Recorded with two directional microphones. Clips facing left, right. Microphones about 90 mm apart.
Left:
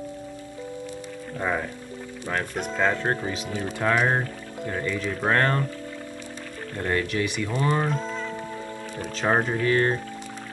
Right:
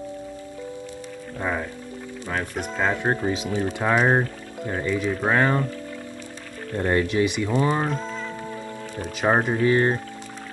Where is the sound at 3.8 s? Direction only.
15° right (ahead or behind).